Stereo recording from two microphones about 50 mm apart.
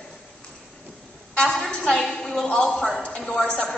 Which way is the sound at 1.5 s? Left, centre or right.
Centre.